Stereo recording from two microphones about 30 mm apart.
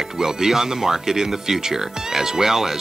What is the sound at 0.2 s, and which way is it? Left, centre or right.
Speech, centre.